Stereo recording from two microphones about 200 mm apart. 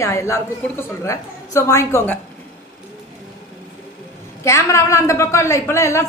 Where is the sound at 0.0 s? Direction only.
15° left (ahead or behind).